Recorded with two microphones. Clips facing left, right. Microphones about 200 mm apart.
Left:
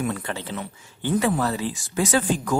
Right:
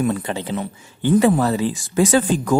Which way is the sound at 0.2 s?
15° right (ahead or behind).